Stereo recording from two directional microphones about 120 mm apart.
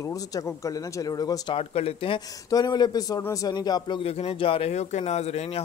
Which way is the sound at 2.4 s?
35° left (ahead or behind).